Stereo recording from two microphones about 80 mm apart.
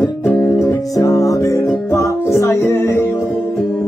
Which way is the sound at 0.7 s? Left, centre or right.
Left.